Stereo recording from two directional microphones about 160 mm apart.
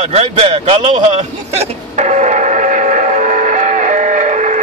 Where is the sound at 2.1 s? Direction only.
50° right (ahead or behind).